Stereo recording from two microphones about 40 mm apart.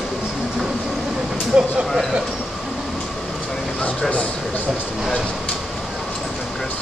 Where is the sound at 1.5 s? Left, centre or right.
Right.